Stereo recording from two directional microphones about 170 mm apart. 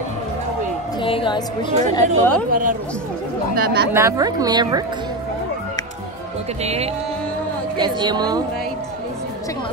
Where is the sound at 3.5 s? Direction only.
65° right (ahead or behind).